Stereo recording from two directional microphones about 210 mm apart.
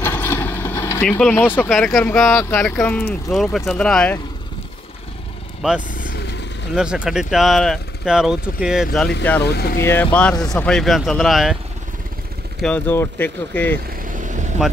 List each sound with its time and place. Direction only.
0.0 s vehicle: 10° left (ahead or behind)
2.0 s speech: 10° left (ahead or behind)
5.6 s speech: 5° right (ahead or behind)
5.9 s vehicle: 40° left (ahead or behind)
6.7 s speech: 5° right (ahead or behind)
9.4 s speech: 50° left (ahead or behind)
9.8 s speech: 10° left (ahead or behind)
12.5 s speech: 5° left (ahead or behind)
14.0 s vehicle: 40° right (ahead or behind)